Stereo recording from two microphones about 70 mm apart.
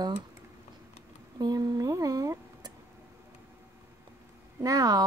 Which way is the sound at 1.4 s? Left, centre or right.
Right.